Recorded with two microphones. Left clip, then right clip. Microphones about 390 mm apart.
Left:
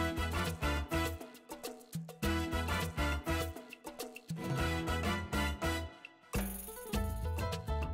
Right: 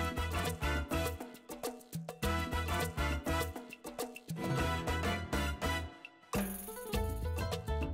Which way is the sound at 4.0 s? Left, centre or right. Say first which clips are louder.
Right 4 dB; right.